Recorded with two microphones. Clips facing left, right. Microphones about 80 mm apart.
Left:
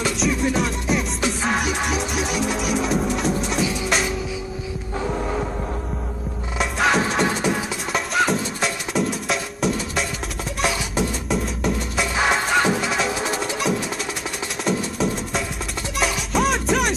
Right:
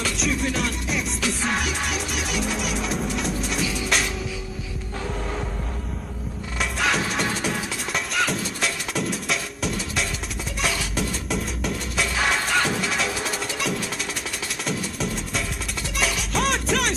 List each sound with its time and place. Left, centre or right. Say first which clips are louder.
0.0 s music: left 4 dB; centre
5.0 s music: left 5 dB; left
6.6 s music: left 4 dB; centre
10.7 s music: left 4 dB; centre
11.2 s music: left 4 dB; centre